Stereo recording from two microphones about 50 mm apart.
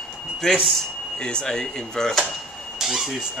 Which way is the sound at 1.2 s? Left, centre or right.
Centre.